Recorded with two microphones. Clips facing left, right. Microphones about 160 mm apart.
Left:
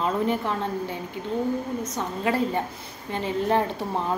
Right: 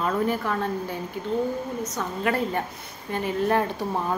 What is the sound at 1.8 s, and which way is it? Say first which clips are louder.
A woman's voice: even; 25° left (ahead or behind).